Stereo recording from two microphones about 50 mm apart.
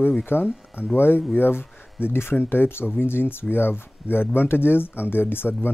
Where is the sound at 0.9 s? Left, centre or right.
Left.